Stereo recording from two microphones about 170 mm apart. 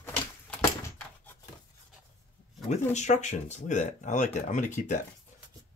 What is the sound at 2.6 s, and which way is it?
Speech, 45° left (ahead or behind).